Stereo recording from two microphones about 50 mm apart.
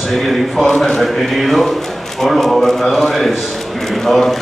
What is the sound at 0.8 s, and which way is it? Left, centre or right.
A man's voice, centre.